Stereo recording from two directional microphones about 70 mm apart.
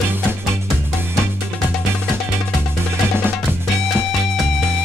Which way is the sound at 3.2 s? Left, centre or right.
Right.